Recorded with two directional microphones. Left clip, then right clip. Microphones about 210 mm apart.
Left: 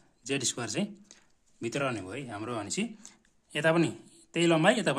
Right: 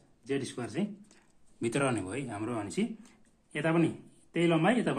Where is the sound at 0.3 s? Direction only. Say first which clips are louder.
Left 3 dB; 45° left (ahead or behind).